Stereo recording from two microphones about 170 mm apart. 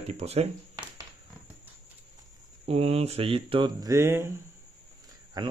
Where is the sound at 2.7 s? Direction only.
35° right (ahead or behind); by 4.3 s 15° right (ahead or behind).